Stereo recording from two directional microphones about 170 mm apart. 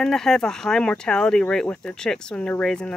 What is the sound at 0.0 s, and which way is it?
Speech, 5° left (ahead or behind).